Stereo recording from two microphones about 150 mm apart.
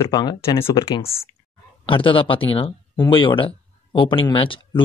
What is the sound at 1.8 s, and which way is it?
Speech, 35° left (ahead or behind).